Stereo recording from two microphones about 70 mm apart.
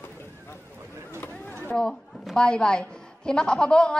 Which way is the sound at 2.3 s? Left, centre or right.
Centre.